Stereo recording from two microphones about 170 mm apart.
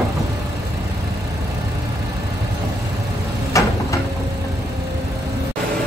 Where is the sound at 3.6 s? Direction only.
20° left (ahead or behind).